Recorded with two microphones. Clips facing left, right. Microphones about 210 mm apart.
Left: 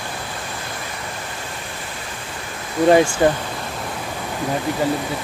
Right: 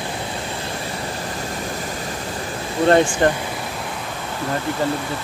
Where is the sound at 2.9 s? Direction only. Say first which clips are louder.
Left 1 dB; 10° left (ahead or behind).